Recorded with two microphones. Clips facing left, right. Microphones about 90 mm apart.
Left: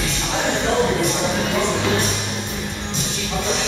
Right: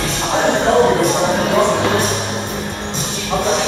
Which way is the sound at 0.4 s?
45° right (ahead or behind).